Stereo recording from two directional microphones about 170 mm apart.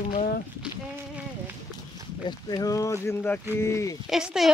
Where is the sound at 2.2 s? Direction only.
25° left (ahead or behind).